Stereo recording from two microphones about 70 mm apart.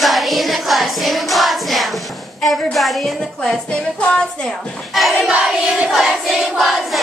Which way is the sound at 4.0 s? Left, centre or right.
Centre.